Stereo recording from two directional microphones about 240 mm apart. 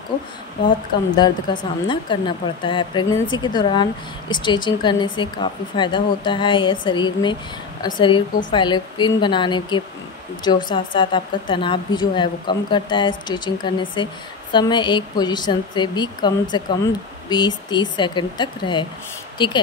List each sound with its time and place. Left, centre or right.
1.1 s speech: centre